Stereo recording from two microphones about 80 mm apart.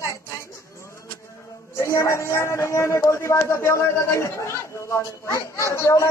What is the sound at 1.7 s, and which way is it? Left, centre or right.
A man's voice, left.